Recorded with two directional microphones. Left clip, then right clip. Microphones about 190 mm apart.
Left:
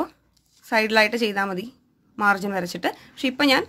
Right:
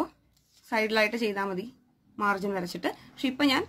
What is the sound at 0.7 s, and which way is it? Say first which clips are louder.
A woman's voice: left 7 dB; 35° left (ahead or behind).